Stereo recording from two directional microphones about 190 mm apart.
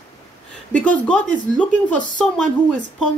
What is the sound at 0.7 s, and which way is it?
A man's voice, 5° left (ahead or behind).